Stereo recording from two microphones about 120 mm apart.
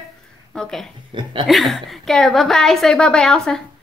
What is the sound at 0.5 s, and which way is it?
Speech, 5° left (ahead or behind).